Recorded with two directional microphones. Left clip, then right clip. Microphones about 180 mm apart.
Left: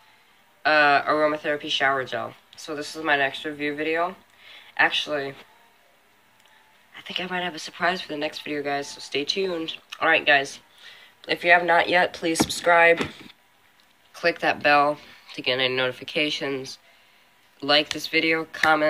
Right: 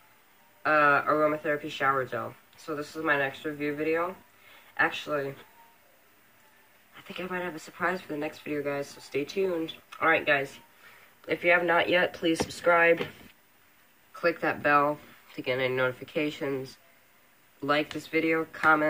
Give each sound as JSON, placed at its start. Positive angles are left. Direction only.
{"t": 0.6, "sound": "speech", "side_deg": -15}
{"t": 7.0, "sound": "speech", "side_deg": -15}
{"t": 14.1, "sound": "speech", "side_deg": -15}